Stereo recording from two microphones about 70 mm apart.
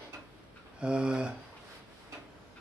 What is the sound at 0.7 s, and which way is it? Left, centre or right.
Speech, centre.